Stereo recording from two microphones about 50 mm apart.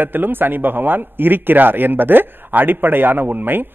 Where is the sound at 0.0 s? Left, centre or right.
Right.